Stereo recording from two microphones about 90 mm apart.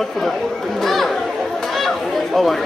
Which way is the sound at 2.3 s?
Centre (ahead or behind).